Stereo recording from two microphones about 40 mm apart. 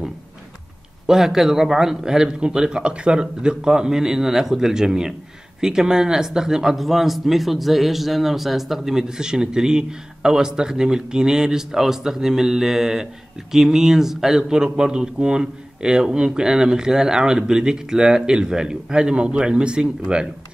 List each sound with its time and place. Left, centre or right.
1.0 s speech: centre